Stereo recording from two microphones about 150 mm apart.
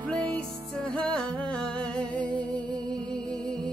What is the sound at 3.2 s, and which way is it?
Music, 5° left (ahead or behind).